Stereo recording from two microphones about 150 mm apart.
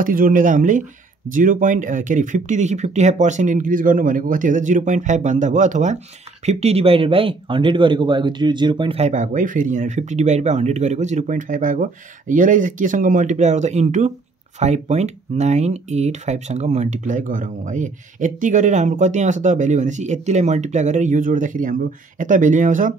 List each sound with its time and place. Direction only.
0.0 s speech: 65° right (ahead or behind); by 9.0 s 35° right (ahead or behind)
9.0 s speech: 55° right (ahead or behind)